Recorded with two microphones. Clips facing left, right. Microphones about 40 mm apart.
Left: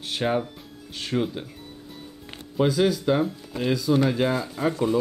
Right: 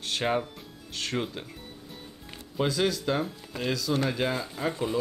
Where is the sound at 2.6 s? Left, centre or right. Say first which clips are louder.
Left 5 dB; centre.